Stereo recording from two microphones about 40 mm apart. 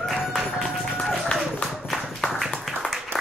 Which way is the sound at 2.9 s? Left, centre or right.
Centre.